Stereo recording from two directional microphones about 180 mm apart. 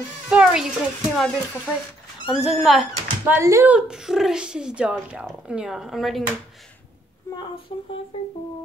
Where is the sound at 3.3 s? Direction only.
15° right (ahead or behind).